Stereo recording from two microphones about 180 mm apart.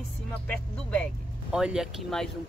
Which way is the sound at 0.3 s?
10° left (ahead or behind).